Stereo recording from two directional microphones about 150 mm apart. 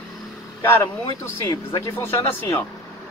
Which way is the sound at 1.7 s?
15° left (ahead or behind).